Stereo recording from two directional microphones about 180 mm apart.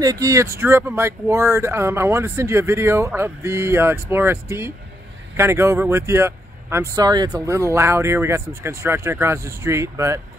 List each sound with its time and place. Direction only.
0.0 s speech: 20° right (ahead or behind)